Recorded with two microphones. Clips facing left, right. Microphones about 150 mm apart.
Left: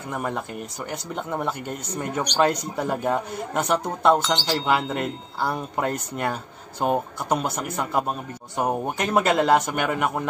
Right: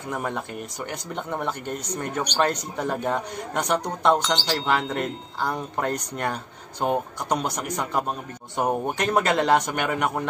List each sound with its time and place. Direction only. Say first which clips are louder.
0.1 s a man's voice: left 1 dB; 5° left (ahead or behind)